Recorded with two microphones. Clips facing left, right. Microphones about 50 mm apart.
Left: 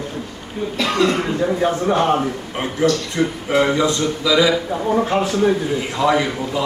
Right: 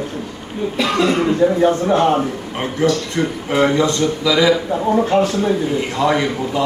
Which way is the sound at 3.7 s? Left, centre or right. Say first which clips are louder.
Right 2 dB; centre.